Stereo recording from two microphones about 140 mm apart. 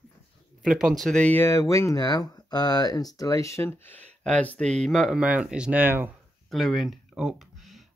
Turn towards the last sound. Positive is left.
turn(degrees=0)  # may be behind; listen again after turning